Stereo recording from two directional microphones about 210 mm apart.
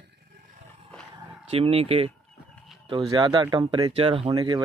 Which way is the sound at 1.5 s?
30° right (ahead or behind).